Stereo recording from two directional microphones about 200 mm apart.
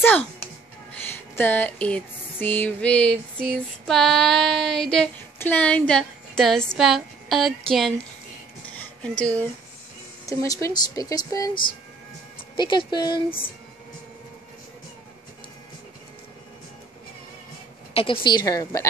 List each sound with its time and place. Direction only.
0.0 s a child's voice: 10° left (ahead or behind)
1.3 s music: 10° left (ahead or behind)
8.6 s a sound: 5° left (ahead or behind)
10.2 s speech: 15° left (ahead or behind)
12.5 s speech: 25° left (ahead or behind)
17.9 s speech: 25° left (ahead or behind)